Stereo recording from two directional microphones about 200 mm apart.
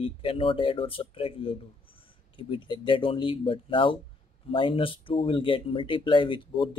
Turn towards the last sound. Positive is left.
turn(degrees=25)  # may be behind; listen again after turning